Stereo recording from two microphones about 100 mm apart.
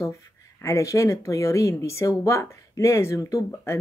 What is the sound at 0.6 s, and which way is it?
Speech, 30° left (ahead or behind).